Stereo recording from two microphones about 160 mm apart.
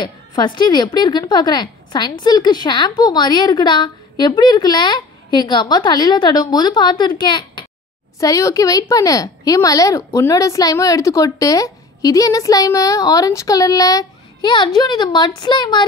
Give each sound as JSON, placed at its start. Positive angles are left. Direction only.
{"t": 0.0, "sound": "a woman's voice", "side_deg": 25}